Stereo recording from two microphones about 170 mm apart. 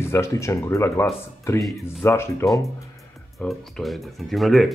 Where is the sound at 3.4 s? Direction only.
Centre (ahead or behind).